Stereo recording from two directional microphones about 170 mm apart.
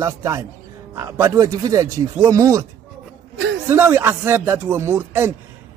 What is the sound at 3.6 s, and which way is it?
Speech, 15° right (ahead or behind).